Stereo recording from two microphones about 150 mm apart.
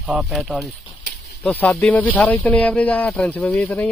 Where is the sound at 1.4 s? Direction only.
10° left (ahead or behind).